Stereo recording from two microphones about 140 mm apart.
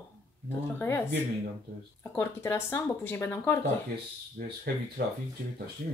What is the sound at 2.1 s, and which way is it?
Speech, 15° left (ahead or behind).